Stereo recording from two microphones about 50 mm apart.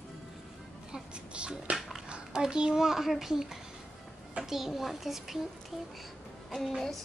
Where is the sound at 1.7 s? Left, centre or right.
Right.